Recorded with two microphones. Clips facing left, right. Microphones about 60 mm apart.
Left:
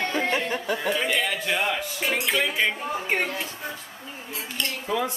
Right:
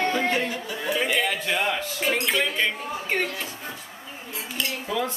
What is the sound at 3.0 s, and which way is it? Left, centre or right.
Speech, centre.